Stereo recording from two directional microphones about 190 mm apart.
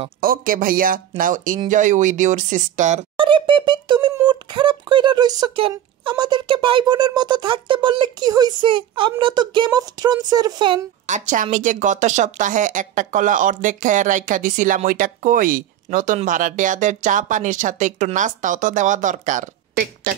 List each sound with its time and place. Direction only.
0.2 s speech: 50° right (ahead or behind)
3.3 s speech: 25° right (ahead or behind)
11.1 s speech: 40° right (ahead or behind)